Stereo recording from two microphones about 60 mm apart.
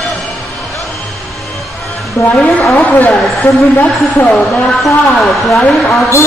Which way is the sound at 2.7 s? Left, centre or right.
Left.